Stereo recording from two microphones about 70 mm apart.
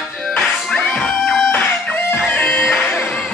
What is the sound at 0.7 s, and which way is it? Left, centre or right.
Music, centre.